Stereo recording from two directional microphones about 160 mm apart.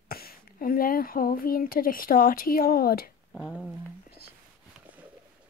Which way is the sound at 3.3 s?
5° left (ahead or behind).